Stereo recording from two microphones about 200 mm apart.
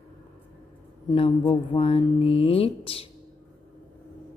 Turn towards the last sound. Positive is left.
turn(degrees=30)  # may be behind; listen again after turning